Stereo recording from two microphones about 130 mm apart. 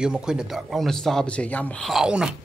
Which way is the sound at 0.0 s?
5° right (ahead or behind).